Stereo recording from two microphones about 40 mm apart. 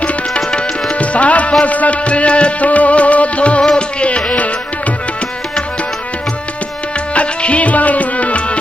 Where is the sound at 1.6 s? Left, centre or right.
Left.